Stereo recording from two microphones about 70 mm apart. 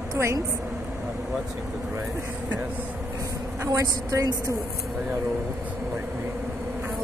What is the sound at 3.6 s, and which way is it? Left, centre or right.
Speech, right.